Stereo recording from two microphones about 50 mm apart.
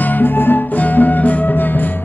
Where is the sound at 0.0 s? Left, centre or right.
Left.